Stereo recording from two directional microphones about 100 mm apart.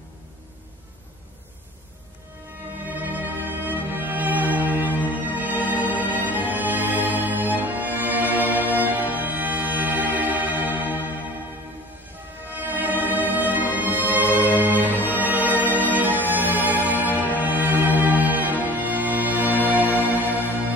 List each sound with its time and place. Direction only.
2.8 s music: 15° right (ahead or behind)
12.4 s music: 20° right (ahead or behind)